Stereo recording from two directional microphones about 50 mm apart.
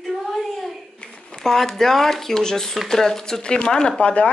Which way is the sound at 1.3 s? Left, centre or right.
Centre.